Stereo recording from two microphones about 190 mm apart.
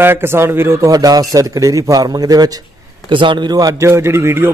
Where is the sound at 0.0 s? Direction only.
10° right (ahead or behind).